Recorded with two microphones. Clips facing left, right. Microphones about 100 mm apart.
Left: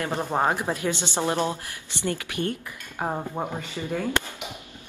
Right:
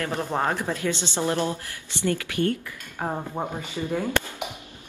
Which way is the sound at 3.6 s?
15° right (ahead or behind).